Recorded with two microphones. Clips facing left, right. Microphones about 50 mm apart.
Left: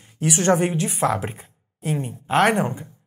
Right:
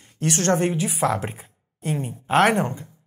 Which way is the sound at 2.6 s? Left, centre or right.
Centre.